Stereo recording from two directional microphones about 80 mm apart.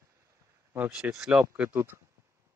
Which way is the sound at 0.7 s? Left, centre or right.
Right.